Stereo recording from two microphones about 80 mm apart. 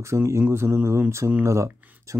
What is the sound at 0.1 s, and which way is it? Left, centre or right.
Speech, right.